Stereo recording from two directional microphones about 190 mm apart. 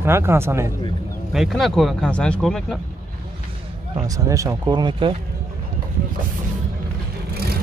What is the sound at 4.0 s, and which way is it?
Speech, 15° right (ahead or behind).